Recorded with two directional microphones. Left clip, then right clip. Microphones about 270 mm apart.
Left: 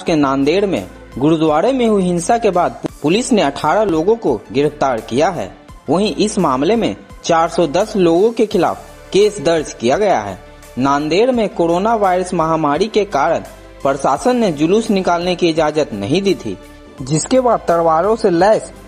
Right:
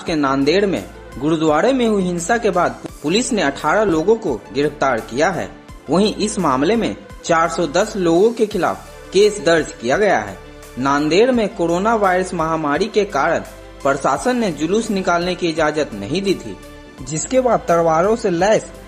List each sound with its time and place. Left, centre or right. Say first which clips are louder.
0.0 s speech: left 3 dB; centre